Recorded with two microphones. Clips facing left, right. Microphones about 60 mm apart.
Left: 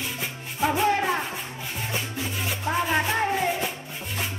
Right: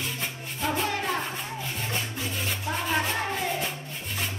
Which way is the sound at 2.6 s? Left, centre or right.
Centre.